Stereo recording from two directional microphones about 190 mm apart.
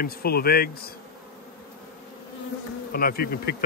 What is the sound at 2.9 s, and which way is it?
Speech, 55° left (ahead or behind).